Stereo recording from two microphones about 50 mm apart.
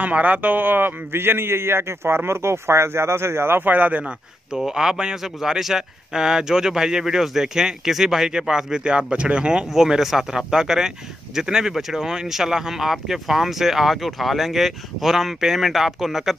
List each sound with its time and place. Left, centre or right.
0.0 s a man's voice: right
3.7 s speech: right
4.0 s speech: centre
9.7 s speech: centre